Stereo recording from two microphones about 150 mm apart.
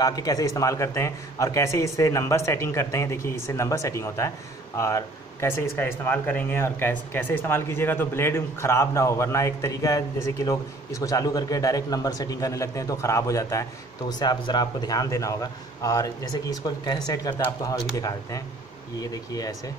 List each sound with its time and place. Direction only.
0.0 s speech: 25° left (ahead or behind)